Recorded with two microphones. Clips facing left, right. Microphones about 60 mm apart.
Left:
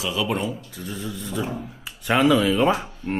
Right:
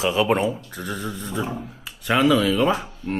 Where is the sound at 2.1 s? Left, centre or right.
Centre.